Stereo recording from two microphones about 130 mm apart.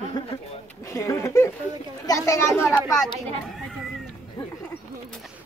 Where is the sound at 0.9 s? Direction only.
20° left (ahead or behind).